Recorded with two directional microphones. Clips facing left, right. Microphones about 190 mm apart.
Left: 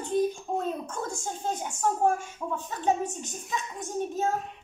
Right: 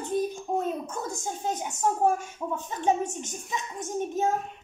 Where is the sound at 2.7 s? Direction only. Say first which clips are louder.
Right 1 dB; 20° right (ahead or behind).